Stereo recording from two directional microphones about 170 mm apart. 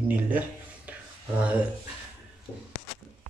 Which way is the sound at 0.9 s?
10° right (ahead or behind).